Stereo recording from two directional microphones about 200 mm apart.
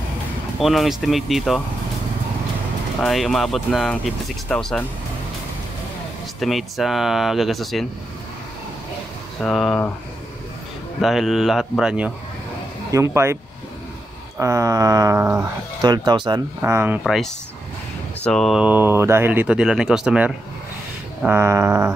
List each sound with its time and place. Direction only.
0.6 s speech: centre (ahead or behind)
3.0 s speech: centre (ahead or behind)
6.4 s speech: centre (ahead or behind)
9.4 s speech: centre (ahead or behind)
11.0 s speech: centre (ahead or behind)
12.9 s a sound: 15° right (ahead or behind)
14.4 s a sound: 15° right (ahead or behind)
15.8 s speech: 20° right (ahead or behind)
17.0 s speech: centre (ahead or behind)
21.2 s a sound: 10° right (ahead or behind)